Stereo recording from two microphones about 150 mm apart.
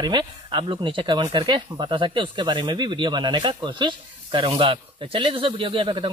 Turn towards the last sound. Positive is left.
turn(degrees=-35)  # may be behind; listen again after turning